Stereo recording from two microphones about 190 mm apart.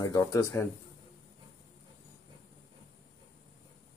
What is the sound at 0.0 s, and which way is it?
Speech, 20° left (ahead or behind).